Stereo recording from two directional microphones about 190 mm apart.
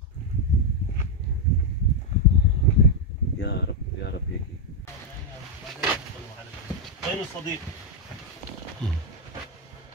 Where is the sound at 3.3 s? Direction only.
65° left (ahead or behind).